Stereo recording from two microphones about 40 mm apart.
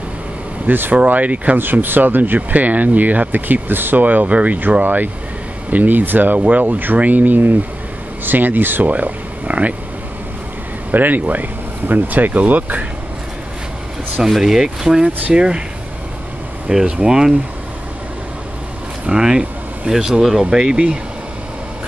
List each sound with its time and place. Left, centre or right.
0.7 s speech: right
0.9 s speech: right
1.6 s speech: right
8.8 s speech: right
10.9 s speech: right
14.3 s speech: centre
16.8 s speech: right
19.0 s speech: centre
20.4 s speech: right